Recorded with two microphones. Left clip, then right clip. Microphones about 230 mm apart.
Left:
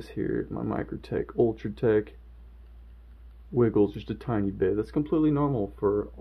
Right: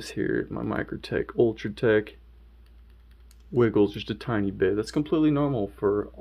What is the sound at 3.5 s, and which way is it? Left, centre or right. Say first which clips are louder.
Speech: right 2 dB; centre.